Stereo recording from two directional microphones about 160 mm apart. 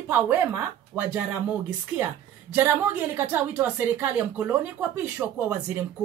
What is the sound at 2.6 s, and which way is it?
A woman's voice, 10° right (ahead or behind).